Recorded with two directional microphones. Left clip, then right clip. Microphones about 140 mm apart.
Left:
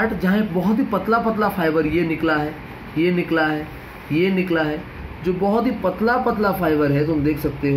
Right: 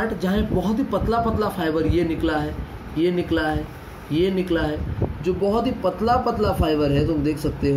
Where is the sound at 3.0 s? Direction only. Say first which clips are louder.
Left 3 dB; 15° left (ahead or behind).